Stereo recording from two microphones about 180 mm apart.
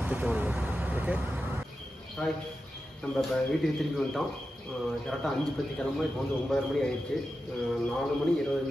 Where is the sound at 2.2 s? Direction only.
5° left (ahead or behind).